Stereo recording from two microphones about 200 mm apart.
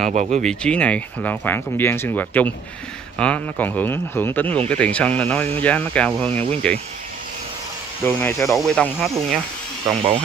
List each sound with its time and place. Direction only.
0.1 s speech: 35° right (ahead or behind)
0.4 s speech: 5° left (ahead or behind)
8.0 s speech: 10° left (ahead or behind)
9.8 s speech: 25° right (ahead or behind)